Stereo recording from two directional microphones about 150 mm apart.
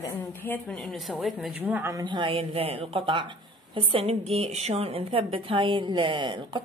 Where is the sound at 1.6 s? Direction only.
10° right (ahead or behind).